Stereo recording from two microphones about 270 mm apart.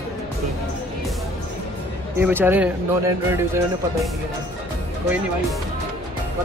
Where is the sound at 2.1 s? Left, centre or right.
Centre.